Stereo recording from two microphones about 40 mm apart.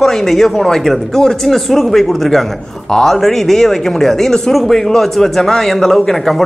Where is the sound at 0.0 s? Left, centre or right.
Centre.